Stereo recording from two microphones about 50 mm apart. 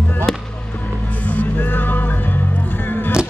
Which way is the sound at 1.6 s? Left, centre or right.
Left.